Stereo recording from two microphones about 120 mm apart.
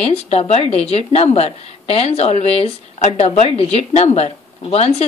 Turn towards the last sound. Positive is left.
turn(degrees=60)  # may be behind; listen again after turning